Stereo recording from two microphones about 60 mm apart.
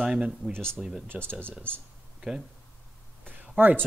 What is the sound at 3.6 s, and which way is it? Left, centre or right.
Speech, right.